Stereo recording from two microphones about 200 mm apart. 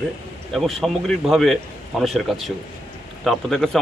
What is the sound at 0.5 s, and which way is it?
Speech, centre (ahead or behind).